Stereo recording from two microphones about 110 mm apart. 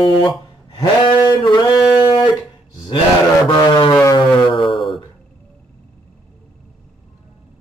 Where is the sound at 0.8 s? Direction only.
35° left (ahead or behind).